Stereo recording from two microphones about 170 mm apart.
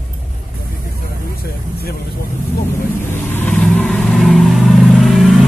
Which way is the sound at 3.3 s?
10° left (ahead or behind).